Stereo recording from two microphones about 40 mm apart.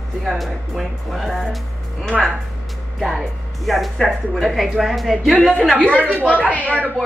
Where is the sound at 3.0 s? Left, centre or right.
Centre.